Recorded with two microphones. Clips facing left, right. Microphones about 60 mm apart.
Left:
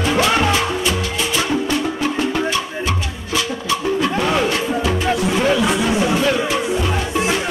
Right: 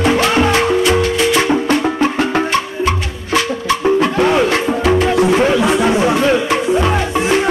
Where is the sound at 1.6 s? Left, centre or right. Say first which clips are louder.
Right 5 dB; right.